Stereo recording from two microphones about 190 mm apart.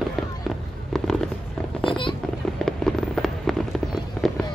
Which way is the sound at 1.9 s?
25° left (ahead or behind).